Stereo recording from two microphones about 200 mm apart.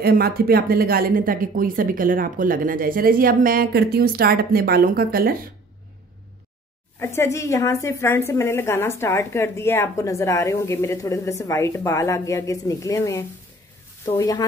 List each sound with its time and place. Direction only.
0.0 s speech: 50° right (ahead or behind)
7.0 s a woman's voice: 10° left (ahead or behind)